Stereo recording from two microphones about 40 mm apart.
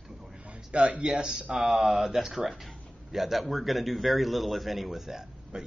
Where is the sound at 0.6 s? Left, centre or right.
Right.